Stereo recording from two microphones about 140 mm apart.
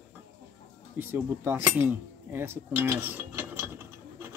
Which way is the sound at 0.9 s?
15° right (ahead or behind).